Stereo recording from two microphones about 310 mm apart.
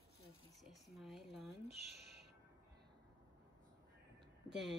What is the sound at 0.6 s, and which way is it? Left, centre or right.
Speech, centre.